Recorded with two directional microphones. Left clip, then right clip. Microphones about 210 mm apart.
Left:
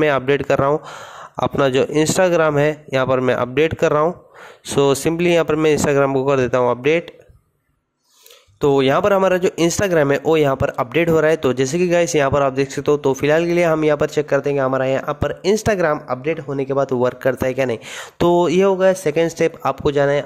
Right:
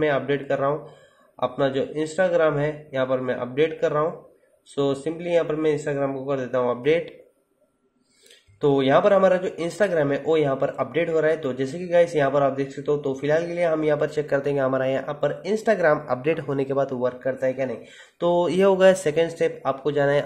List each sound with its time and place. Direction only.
0.0 s speech: 35° left (ahead or behind)
8.5 s speech: 30° left (ahead or behind)
15.1 s speech: 35° left (ahead or behind)
16.1 s speech: 10° left (ahead or behind)
18.7 s a man's voice: 10° left (ahead or behind)
19.1 s speech: 25° left (ahead or behind)